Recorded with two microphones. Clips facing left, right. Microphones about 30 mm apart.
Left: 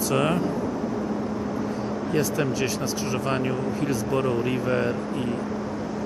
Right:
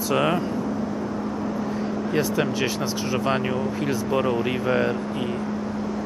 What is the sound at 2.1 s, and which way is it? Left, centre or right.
Speech, centre.